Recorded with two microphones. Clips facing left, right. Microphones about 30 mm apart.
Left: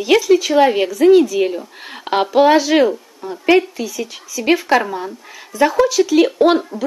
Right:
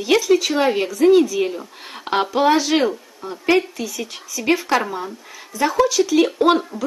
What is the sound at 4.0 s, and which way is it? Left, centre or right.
Speech, left.